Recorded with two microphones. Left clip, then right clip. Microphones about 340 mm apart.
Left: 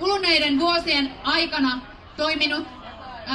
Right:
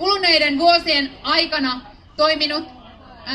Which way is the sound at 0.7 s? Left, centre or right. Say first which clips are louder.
Right 6 dB; centre.